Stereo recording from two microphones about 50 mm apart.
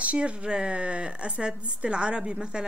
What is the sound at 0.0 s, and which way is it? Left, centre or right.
A woman's voice, right.